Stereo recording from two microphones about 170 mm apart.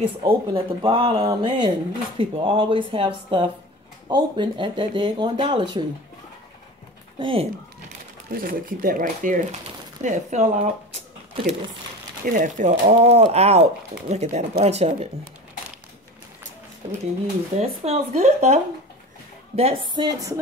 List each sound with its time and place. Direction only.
0.0 s speech: 30° right (ahead or behind)
7.2 s speech: 30° right (ahead or behind)
8.3 s speech: 55° right (ahead or behind); by 15.0 s 40° right (ahead or behind)
17.6 s speech: 40° right (ahead or behind); by 20.3 s 20° right (ahead or behind)